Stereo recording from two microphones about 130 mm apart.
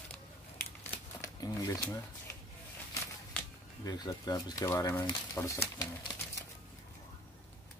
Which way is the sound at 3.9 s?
30° left (ahead or behind).